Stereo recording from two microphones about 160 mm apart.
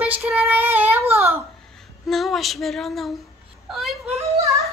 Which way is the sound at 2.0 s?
Centre (ahead or behind).